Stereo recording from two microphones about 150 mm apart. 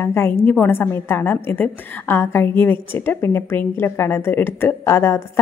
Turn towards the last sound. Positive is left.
turn(degrees=15)  # may be behind; listen again after turning